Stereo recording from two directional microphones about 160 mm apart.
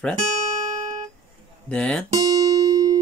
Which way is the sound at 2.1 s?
25° right (ahead or behind).